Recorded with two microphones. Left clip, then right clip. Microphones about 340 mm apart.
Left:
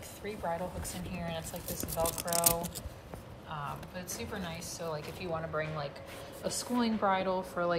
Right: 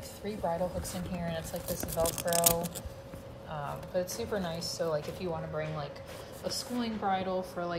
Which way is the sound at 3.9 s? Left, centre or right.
Right.